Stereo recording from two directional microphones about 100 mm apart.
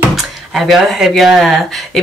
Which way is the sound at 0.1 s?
Centre (ahead or behind).